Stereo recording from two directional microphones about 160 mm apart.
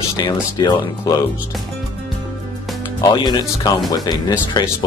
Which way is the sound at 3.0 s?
25° left (ahead or behind).